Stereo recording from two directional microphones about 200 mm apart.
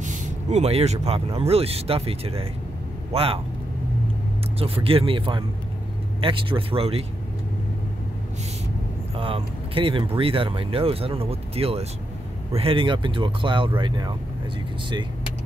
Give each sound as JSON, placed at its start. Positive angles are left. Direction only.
{"t": 0.0, "sound": "speech", "side_deg": -40}
{"t": 4.6, "sound": "speech", "side_deg": -30}
{"t": 9.1, "sound": "speech", "side_deg": -25}